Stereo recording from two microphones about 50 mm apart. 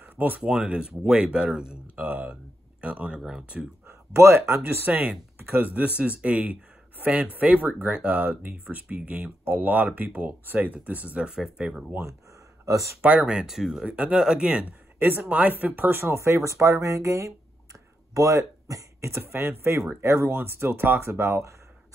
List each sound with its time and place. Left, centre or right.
0.0 s a sound: right
0.4 s speech: right
2.0 s speech: right
3.2 s speech: centre
3.8 s speech: right
5.5 s speech: right
11.1 s speech: centre
13.0 s speech: right
13.8 s speech: right
15.0 s speech: right
15.2 s speech: right
15.5 s speech: right
20.0 s speech: right
20.2 s speech: right